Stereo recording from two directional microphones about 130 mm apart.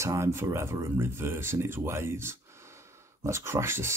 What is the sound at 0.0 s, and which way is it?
Speech, 20° right (ahead or behind).